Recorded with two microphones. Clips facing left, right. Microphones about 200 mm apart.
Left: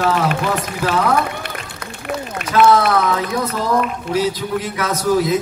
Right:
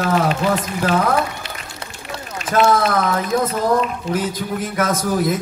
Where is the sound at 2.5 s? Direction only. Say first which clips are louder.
Left 3 dB; 50° right (ahead or behind).